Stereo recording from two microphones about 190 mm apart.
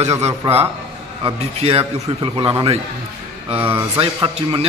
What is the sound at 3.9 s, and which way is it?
Speech, 30° right (ahead or behind).